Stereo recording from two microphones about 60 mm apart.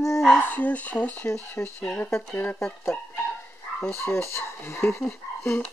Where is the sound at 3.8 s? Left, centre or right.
Left.